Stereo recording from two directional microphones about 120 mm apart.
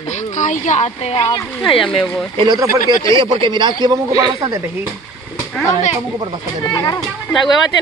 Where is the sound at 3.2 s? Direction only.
45° right (ahead or behind).